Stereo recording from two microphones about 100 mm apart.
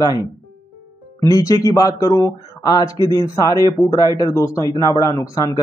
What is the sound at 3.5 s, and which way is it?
Speech, 40° right (ahead or behind).